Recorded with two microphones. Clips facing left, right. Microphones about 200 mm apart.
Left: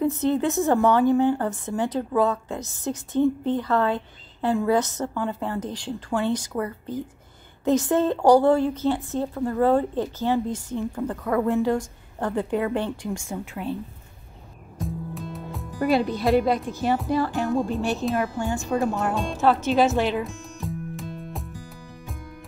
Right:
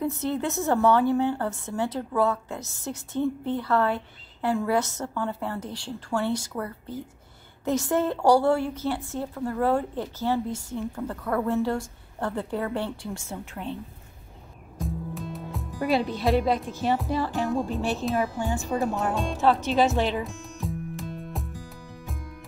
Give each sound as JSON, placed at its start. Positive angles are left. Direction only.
{"t": 0.0, "sound": "a woman's voice", "side_deg": 20}
{"t": 14.8, "sound": "speech", "side_deg": 0}